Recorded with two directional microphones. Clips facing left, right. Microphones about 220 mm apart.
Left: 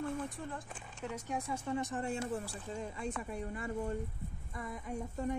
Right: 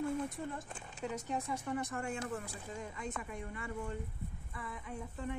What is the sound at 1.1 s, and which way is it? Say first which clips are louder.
Speech: left 1 dB; 15° left (ahead or behind).